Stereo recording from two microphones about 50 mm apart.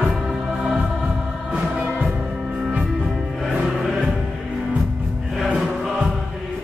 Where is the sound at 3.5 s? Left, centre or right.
Centre.